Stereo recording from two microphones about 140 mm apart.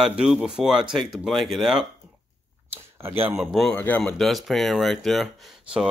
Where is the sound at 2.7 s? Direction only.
15° right (ahead or behind).